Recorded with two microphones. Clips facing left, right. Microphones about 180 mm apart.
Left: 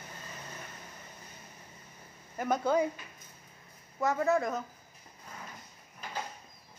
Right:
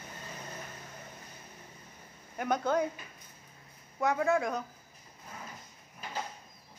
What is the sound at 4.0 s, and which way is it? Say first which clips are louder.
Speech: even; centre (ahead or behind).